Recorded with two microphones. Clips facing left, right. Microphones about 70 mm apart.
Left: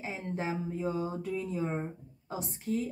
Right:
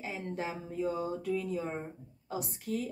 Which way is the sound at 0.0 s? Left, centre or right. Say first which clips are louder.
Left 1 dB; left.